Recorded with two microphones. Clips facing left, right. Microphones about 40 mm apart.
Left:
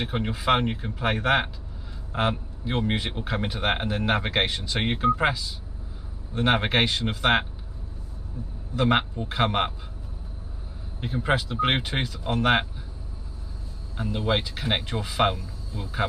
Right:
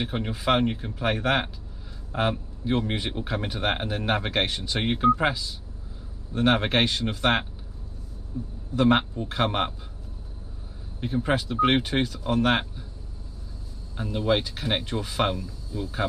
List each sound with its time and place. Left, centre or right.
0.0 s speech: centre
3.4 s speech: centre
6.3 s speech: left
8.7 s speech: centre
11.4 s speech: centre
13.9 s speech: centre